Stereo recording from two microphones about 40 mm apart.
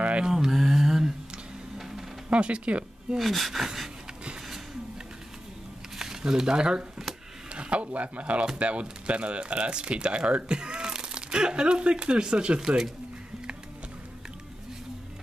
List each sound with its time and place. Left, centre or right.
0.2 s mantra: centre
1.8 s music: centre
2.2 s speech: right
3.2 s speech: centre
5.9 s speech: centre
7.5 s speech: right; by 12.9 s centre